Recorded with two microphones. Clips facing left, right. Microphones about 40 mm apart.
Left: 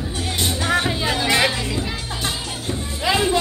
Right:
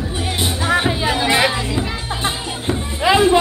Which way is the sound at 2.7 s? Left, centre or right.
Right.